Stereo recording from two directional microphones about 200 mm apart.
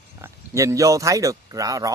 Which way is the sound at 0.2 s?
15° right (ahead or behind).